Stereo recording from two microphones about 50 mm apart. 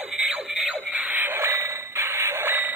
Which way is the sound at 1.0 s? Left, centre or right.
Right.